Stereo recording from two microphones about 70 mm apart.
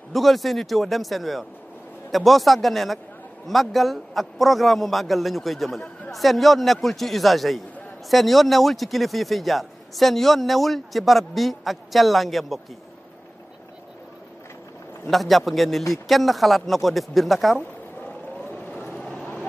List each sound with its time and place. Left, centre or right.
0.1 s speech: centre
15.0 s speech: centre